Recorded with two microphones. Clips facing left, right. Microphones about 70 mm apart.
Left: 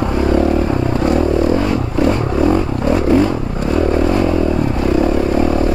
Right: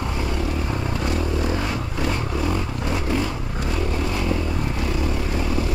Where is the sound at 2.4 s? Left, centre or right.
Left.